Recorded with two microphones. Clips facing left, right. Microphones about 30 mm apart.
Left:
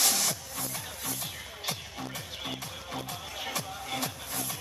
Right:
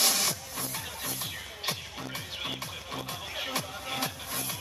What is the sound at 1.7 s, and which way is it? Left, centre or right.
Music, right.